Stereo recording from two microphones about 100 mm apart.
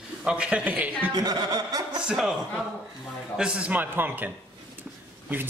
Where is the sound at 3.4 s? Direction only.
10° right (ahead or behind).